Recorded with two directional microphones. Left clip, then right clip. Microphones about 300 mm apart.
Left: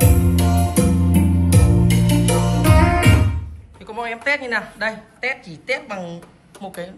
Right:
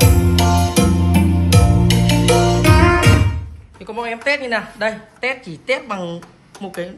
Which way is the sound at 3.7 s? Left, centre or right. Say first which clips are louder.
Right 2 dB; centre.